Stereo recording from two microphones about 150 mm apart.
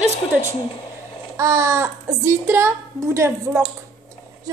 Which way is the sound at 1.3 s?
20° right (ahead or behind).